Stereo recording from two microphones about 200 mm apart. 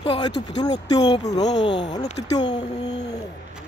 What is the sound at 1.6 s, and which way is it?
Speech, 60° left (ahead or behind).